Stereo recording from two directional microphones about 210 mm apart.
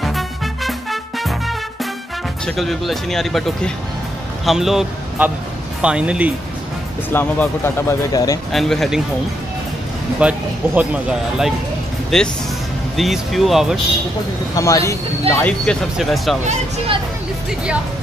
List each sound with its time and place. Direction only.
0.7 s music: centre (ahead or behind)
2.4 s speech: centre (ahead or behind)
7.1 s speech: 10° left (ahead or behind)
8.5 s speech: centre (ahead or behind)
10.2 s speech: 5° right (ahead or behind)
14.5 s speech: 15° left (ahead or behind)
15.6 s speech: centre (ahead or behind)
16.4 s speech: 30° right (ahead or behind)